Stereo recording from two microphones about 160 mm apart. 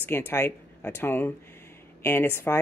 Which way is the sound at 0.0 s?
15° left (ahead or behind).